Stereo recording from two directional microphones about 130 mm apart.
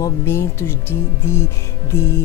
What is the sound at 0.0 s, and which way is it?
Speech, 20° left (ahead or behind).